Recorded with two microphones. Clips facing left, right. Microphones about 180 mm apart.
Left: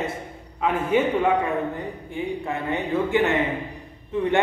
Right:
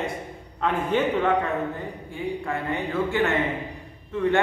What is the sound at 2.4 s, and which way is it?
A man's voice, 20° left (ahead or behind).